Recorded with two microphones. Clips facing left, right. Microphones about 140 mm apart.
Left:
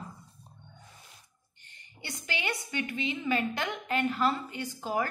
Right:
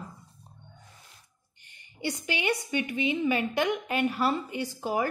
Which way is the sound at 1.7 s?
15° right (ahead or behind).